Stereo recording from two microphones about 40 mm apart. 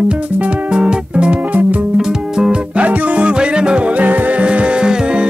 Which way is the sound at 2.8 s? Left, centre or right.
Right.